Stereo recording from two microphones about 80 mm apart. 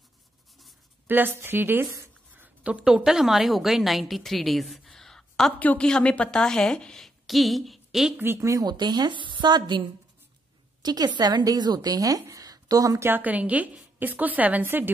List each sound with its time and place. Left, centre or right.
1.0 s a woman's voice: right
2.3 s a sound: right
2.7 s a woman's voice: centre
5.6 s a woman's voice: centre
8.4 s speech: right
8.6 s a woman's voice: right
13.0 s a woman's voice: right